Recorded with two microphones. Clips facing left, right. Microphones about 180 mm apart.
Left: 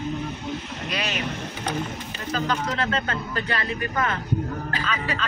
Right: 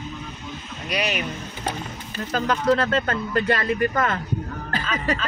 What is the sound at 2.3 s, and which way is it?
Speech, 45° right (ahead or behind).